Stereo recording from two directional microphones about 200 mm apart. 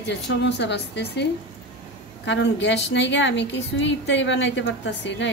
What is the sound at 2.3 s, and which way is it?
A woman's voice, 60° left (ahead or behind).